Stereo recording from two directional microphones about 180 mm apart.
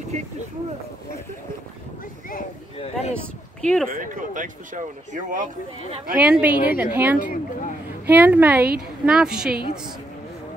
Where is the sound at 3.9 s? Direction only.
45° right (ahead or behind).